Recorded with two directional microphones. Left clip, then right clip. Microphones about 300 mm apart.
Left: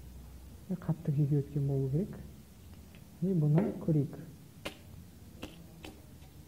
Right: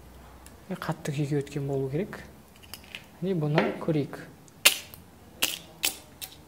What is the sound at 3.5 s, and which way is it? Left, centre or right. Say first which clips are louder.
Arrow: right 7 dB; centre.